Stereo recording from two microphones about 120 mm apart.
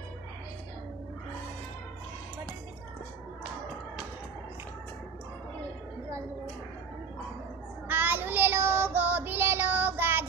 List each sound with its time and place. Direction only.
7.9 s child singing: 15° right (ahead or behind)